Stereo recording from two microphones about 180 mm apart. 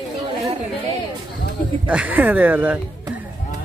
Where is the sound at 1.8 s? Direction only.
10° right (ahead or behind).